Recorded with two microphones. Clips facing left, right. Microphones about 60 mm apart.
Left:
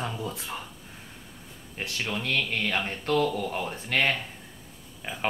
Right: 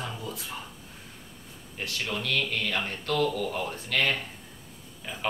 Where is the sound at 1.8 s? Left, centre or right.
Left.